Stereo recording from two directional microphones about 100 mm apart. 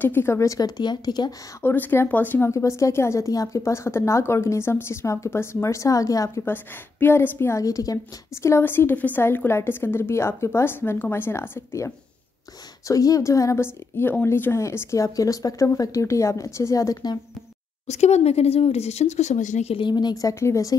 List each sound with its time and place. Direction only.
0.0 s speech: 20° left (ahead or behind); by 1.3 s 45° left (ahead or behind)
1.6 s a woman's voice: 20° left (ahead or behind)
2.5 s a woman's voice: 30° left (ahead or behind)
6.4 s a woman's voice: 20° left (ahead or behind); by 17.2 s 40° left (ahead or behind)
17.9 s speech: 90° left
19.8 s speech: 45° left (ahead or behind); by 20.7 s 30° left (ahead or behind)